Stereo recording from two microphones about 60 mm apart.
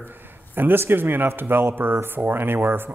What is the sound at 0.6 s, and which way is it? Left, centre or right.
Speech, right.